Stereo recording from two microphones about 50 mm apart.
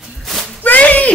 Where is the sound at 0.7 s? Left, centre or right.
Left.